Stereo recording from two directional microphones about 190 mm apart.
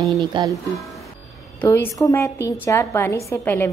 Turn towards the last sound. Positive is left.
turn(degrees=15)  # may be behind; listen again after turning